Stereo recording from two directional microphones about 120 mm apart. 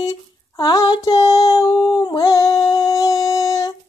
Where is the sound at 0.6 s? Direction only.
35° left (ahead or behind).